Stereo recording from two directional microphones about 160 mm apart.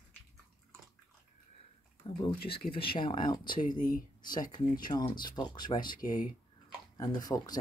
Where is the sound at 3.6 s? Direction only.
55° left (ahead or behind).